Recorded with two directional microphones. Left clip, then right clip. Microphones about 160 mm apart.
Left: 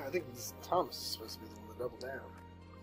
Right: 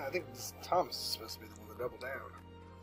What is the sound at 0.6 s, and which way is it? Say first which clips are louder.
Speech: right 1 dB; 20° right (ahead or behind).